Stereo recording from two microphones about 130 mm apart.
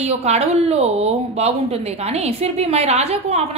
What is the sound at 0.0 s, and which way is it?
A woman's voice, 55° right (ahead or behind).